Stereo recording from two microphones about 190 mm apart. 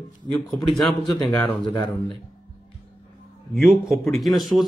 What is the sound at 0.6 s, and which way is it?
Speech, 25° left (ahead or behind).